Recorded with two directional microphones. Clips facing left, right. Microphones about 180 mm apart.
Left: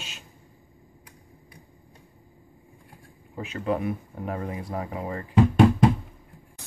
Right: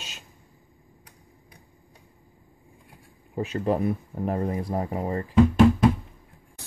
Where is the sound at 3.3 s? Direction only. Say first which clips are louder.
Right 3 dB; 35° right (ahead or behind).